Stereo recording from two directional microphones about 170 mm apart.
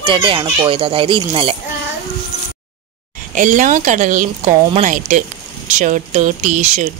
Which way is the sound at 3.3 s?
50° right (ahead or behind).